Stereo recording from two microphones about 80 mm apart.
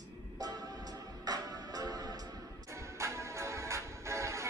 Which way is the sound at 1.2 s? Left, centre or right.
Right.